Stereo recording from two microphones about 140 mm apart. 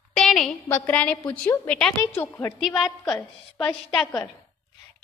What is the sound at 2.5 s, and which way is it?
A woman's voice, centre (ahead or behind).